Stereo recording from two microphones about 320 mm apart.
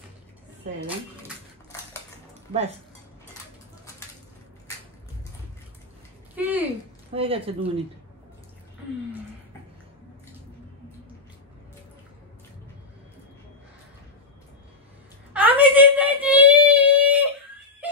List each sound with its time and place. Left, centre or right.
6.3 s a sound: centre
7.2 s speech: centre
15.3 s whimper: centre